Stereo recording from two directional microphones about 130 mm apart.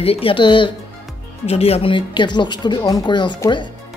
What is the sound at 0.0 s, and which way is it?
Speech, 45° left (ahead or behind).